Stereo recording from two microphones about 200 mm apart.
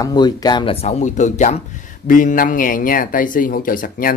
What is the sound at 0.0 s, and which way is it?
Speech, 20° left (ahead or behind).